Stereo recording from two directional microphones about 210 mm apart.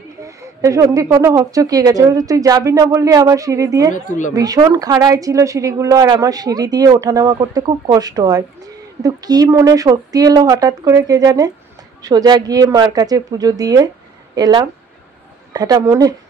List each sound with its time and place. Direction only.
0.2 s speech: 15° right (ahead or behind)
3.9 s a woman's voice: 35° left (ahead or behind)
4.4 s speech: 15° right (ahead or behind)